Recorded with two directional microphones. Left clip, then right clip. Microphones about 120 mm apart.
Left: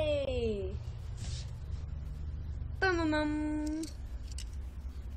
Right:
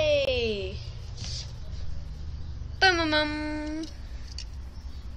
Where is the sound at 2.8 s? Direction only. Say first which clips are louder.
Right 8 dB; centre (ahead or behind).